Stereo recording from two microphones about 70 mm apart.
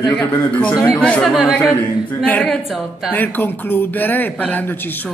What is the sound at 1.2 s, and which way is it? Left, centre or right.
Speech, centre.